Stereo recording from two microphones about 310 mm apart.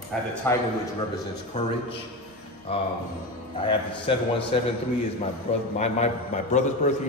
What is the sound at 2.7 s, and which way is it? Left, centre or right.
A man's voice, centre.